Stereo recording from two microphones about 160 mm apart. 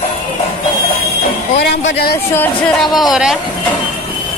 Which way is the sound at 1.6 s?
90° left.